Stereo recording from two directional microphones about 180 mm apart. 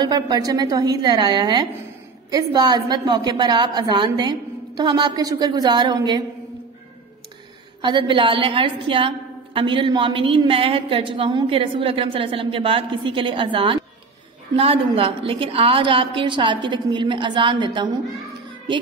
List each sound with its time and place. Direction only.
0.0 s a woman's voice: 20° right (ahead or behind)
7.8 s a woman's voice: 25° right (ahead or behind)